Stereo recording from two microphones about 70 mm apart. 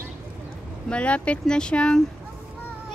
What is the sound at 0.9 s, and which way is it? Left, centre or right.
Speech, centre.